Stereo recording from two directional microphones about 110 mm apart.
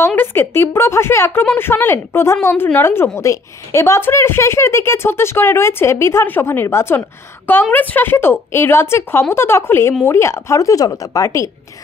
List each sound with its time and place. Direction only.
0.0 s a woman's voice: 20° left (ahead or behind)